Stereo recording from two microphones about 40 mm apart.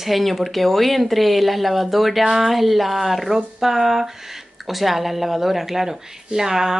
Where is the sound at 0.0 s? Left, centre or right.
Centre.